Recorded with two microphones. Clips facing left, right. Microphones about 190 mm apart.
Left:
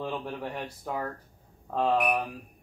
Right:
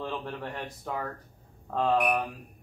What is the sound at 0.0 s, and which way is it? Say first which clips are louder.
Speech: left 1 dB; 10° left (ahead or behind).